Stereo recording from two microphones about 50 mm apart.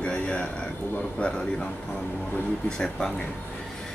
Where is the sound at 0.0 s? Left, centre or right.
Left.